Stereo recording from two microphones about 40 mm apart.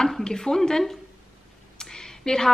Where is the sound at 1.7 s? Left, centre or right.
Centre.